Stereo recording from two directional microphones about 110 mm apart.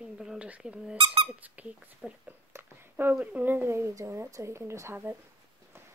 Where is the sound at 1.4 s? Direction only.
15° right (ahead or behind).